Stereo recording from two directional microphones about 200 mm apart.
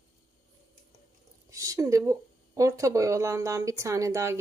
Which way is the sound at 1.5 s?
15° right (ahead or behind).